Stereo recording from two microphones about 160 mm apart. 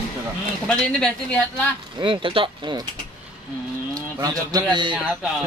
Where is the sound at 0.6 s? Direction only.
5° left (ahead or behind).